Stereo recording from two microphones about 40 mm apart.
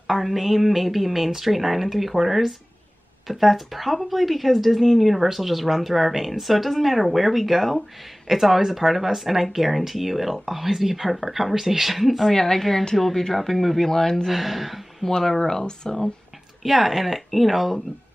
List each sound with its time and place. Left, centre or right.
0.0 s speech: centre
12.3 s speech: centre
14.3 s speech: centre
15.0 s speech: centre
16.6 s speech: centre